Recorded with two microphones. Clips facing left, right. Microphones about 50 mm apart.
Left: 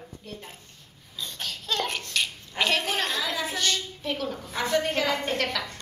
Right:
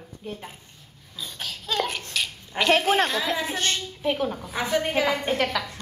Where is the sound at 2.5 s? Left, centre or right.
Right.